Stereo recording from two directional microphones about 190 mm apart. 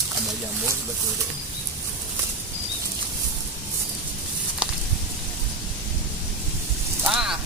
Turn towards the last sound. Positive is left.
turn(degrees=-5)  # may be behind; listen again after turning